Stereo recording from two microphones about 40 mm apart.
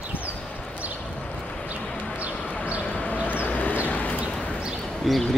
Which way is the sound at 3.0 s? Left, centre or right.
Left.